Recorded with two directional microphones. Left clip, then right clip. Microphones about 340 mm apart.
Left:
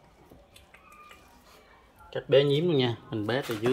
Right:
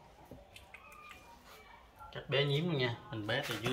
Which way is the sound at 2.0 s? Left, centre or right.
Left.